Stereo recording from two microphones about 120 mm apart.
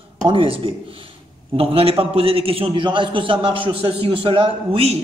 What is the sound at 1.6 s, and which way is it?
A man's voice, 50° right (ahead or behind).